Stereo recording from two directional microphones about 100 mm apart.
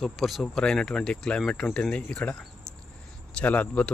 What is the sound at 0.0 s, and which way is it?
Speech, centre (ahead or behind).